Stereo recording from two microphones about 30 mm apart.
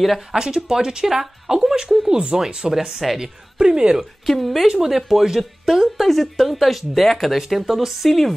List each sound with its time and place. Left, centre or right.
0.3 s a woman's voice: right
3.0 s a woman's voice: centre
3.5 s a woman's voice: right
4.3 s a woman's voice: centre
4.6 s a woman's voice: centre
7.3 s speech: centre